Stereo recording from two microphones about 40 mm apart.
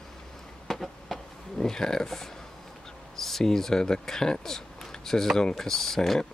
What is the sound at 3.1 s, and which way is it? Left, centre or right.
Speech, centre.